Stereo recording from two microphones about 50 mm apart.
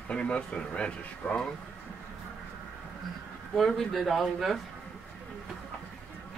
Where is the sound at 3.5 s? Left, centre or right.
Centre.